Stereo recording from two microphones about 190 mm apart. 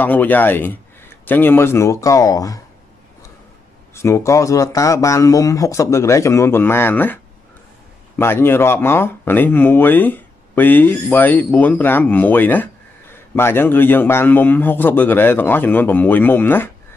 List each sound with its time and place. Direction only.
0.0 s speech: 10° left (ahead or behind)
3.9 s speech: 15° left (ahead or behind)
8.2 s speech: 10° left (ahead or behind)